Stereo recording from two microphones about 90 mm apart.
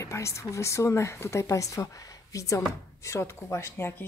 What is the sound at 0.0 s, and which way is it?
Speech, 35° left (ahead or behind).